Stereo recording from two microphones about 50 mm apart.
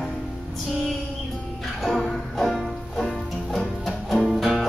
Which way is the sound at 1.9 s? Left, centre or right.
Centre.